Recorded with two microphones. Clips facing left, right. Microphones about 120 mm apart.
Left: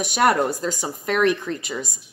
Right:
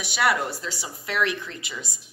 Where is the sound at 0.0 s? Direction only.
45° left (ahead or behind).